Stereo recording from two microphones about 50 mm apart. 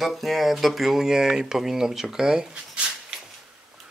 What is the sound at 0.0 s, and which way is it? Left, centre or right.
Speech, centre.